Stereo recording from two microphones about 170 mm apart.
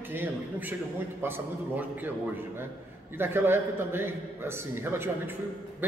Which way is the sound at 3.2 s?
15° right (ahead or behind).